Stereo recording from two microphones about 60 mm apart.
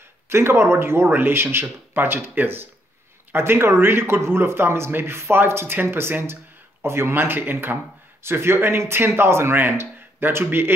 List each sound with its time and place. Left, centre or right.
0.3 s speech: right